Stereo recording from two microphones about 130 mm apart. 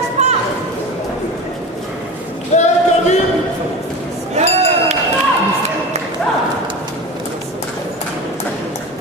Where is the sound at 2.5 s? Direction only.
65° left (ahead or behind).